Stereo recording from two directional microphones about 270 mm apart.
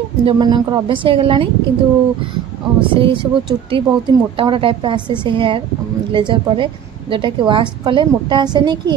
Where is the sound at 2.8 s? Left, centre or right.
Centre.